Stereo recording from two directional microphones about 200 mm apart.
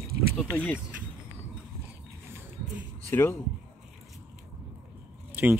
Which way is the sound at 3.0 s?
10° left (ahead or behind).